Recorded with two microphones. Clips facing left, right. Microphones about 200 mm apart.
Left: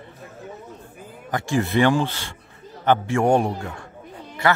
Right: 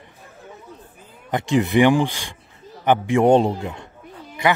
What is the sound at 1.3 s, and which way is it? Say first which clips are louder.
A man's voice: right 3 dB; 20° right (ahead or behind).